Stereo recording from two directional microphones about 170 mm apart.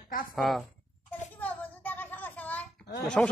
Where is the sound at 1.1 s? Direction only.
10° left (ahead or behind).